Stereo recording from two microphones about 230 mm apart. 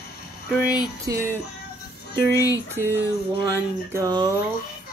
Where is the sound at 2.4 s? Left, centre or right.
Centre.